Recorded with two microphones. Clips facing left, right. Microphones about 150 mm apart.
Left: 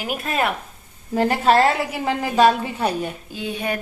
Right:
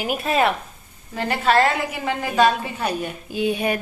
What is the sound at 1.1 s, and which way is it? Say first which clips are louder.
A woman's voice: left 3 dB; 40° left (ahead or behind).